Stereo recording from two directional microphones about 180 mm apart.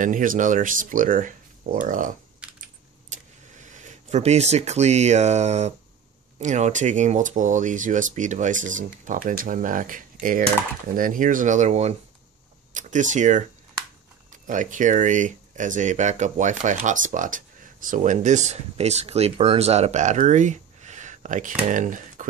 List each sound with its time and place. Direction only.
0.0 s speech: 45° right (ahead or behind)
3.1 s a sound: 40° right (ahead or behind)
6.3 s speech: 40° right (ahead or behind)